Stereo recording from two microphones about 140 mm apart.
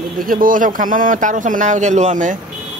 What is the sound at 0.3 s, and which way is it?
A man's voice, 75° right (ahead or behind).